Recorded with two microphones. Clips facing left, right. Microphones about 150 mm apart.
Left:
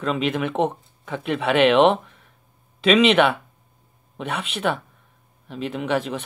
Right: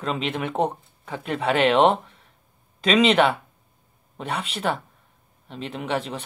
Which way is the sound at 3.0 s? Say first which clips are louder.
Left 1 dB; 35° right (ahead or behind).